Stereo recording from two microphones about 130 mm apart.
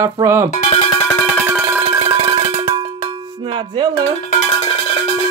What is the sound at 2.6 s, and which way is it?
Cowbell, 45° right (ahead or behind).